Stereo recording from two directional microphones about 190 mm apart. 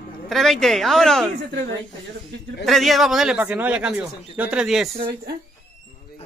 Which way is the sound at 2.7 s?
Centre (ahead or behind).